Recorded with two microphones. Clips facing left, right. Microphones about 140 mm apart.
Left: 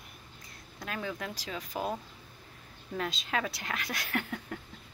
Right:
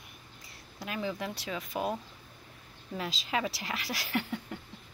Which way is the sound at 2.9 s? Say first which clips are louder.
Even; 5° right (ahead or behind).